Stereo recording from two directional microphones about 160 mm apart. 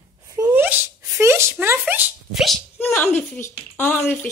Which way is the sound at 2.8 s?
10° left (ahead or behind).